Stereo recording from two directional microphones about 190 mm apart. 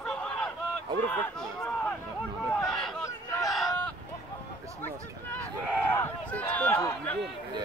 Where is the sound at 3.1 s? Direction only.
15° left (ahead or behind).